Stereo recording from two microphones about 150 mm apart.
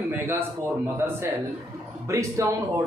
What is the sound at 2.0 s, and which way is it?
Speech, 20° right (ahead or behind).